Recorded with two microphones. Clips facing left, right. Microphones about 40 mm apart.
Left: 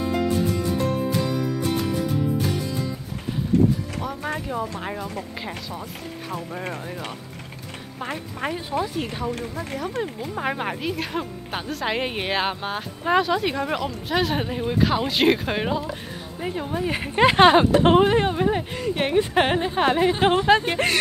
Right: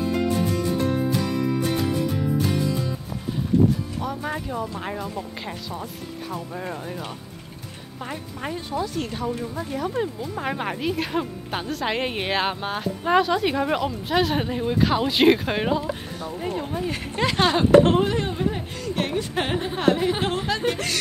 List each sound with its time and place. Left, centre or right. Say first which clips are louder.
4.0 s a woman's voice: even; centre
8.0 s speech: left 3 dB; left
8.8 s a woman's voice: even; centre
16.3 s speech: left 1 dB; centre